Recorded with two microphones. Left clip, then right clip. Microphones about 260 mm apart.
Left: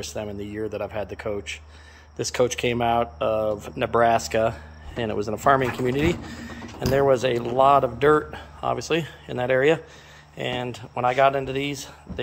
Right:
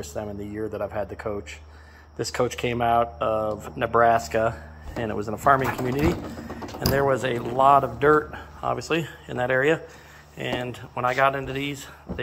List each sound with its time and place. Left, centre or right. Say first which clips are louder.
0.1 s speech: left 1 dB; centre